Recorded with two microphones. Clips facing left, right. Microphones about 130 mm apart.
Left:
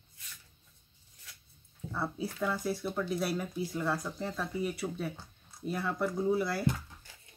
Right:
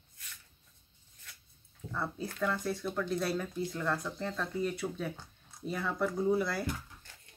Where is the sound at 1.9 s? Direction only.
5° left (ahead or behind).